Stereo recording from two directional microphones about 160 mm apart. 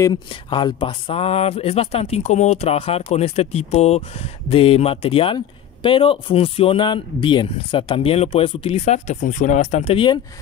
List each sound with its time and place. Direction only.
0.0 s speech: 30° left (ahead or behind)